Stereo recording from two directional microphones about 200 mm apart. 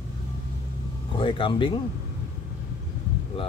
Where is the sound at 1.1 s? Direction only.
25° left (ahead or behind).